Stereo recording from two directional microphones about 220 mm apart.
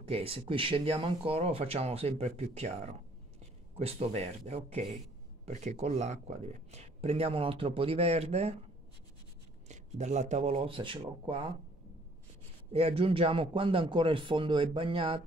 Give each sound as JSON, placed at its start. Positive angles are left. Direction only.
{"t": 0.1, "sound": "speech", "side_deg": -25}
{"t": 9.7, "sound": "speech", "side_deg": -30}
{"t": 12.7, "sound": "speech", "side_deg": -25}